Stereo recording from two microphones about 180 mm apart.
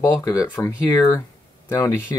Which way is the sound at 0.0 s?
20° left (ahead or behind).